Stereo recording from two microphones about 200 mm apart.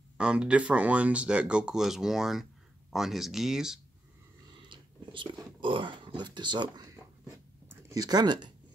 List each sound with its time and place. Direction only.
0.2 s speech: 5° right (ahead or behind)
4.6 s whispering: 25° right (ahead or behind)
5.4 s speech: 25° right (ahead or behind)